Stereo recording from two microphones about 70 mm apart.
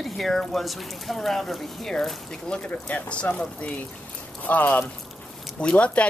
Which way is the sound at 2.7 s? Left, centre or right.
Centre.